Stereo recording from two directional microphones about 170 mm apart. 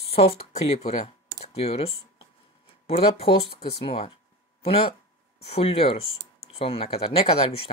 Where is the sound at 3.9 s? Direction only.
35° left (ahead or behind).